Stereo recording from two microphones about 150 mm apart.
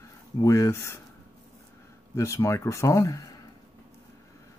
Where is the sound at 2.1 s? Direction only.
20° left (ahead or behind).